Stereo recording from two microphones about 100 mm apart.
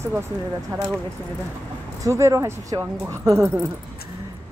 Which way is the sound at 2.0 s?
30° right (ahead or behind).